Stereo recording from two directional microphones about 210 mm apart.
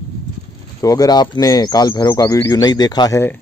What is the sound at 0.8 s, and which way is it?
Speech, 15° left (ahead or behind).